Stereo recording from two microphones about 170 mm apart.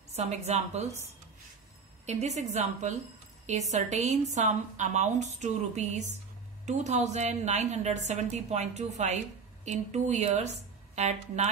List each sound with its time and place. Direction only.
0.1 s a woman's voice: 40° right (ahead or behind)
2.0 s a woman's voice: 40° right (ahead or behind)